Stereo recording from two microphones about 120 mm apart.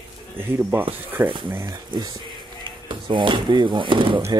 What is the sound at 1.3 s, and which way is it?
Speech, 45° right (ahead or behind).